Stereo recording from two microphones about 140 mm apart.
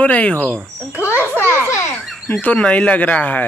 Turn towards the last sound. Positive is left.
turn(degrees=10)  # may be behind; listen again after turning